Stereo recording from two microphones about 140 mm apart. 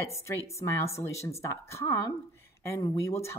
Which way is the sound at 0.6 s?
20° left (ahead or behind).